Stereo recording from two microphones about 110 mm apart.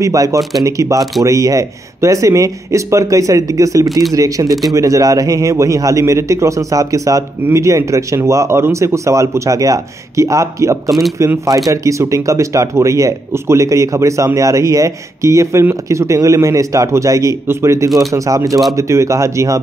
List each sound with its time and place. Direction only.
0.0 s speech: 30° right (ahead or behind)
0.4 s speech: centre (ahead or behind)
0.7 s a man's voice: 30° right (ahead or behind)
4.5 s speech: centre (ahead or behind)
4.7 s a man's voice: 30° right (ahead or behind)
10.9 s speech: centre (ahead or behind)
11.1 s a man's voice: 30° right (ahead or behind)